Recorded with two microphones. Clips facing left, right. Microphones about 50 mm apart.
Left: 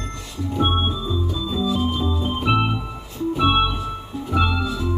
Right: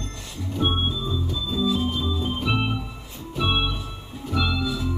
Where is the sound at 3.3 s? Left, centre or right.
Centre.